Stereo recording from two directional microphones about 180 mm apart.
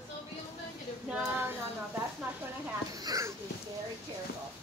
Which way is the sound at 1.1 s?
15° right (ahead or behind).